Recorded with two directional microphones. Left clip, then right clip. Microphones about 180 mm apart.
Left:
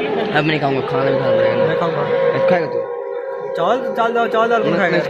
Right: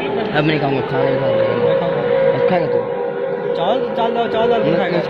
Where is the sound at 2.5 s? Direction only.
10° left (ahead or behind).